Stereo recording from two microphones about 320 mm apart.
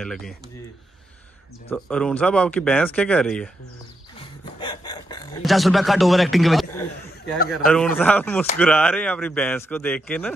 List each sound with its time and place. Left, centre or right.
0.0 s a man's voice: centre
1.7 s a man's voice: centre
4.2 s a sound: centre
5.4 s a man's voice: centre